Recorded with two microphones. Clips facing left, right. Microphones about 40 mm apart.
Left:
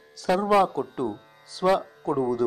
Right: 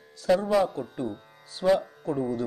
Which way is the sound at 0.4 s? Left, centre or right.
Left.